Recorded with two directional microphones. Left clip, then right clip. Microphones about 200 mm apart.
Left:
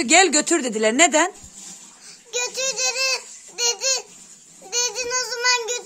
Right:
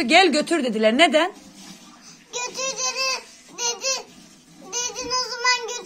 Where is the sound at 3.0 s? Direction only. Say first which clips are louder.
Left 2 dB; 90° left.